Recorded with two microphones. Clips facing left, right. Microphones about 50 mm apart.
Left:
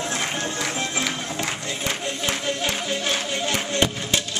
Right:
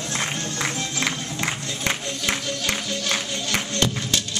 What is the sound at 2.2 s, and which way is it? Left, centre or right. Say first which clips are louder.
Music: even; left.